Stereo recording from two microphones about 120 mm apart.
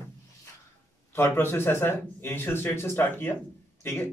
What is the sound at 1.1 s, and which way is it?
A man's voice, 20° left (ahead or behind).